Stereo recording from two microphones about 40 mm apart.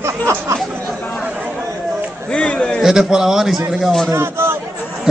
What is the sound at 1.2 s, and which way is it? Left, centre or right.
Chatter, right.